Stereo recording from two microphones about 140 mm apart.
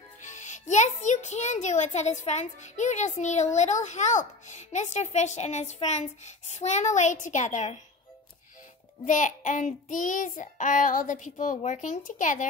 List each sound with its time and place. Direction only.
0.2 s a child's voice: 60° left (ahead or behind)
9.0 s a child's voice: 65° left (ahead or behind)